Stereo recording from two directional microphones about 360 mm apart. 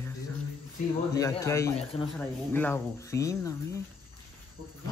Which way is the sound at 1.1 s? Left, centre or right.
Centre.